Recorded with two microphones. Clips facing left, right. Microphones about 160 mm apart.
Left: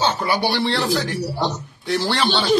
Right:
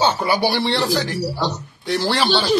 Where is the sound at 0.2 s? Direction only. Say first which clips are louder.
Right 1 dB; 5° right (ahead or behind).